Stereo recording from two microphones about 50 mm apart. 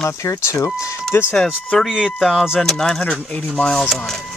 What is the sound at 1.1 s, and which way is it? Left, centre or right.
Speech, left.